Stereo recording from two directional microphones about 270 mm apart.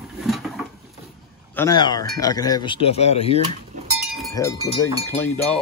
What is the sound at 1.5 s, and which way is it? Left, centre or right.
Speech, centre.